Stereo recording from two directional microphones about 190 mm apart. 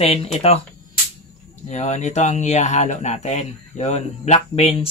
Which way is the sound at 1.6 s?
35° left (ahead or behind).